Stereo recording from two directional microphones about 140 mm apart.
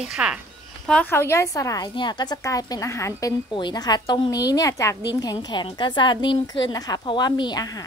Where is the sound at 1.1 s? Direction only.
20° left (ahead or behind).